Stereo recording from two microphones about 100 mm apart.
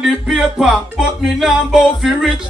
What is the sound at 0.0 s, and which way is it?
Music, 5° right (ahead or behind).